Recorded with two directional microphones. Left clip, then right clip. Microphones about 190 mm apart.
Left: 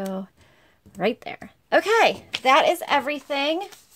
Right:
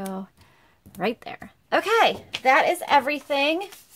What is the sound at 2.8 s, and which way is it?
Speech, 15° left (ahead or behind).